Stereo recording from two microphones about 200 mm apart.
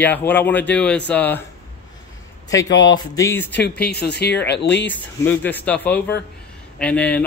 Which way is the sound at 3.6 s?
50° left (ahead or behind).